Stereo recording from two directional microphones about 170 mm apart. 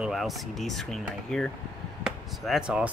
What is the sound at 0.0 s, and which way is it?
Speech, centre (ahead or behind).